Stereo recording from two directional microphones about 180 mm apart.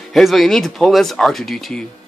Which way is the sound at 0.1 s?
Centre (ahead or behind).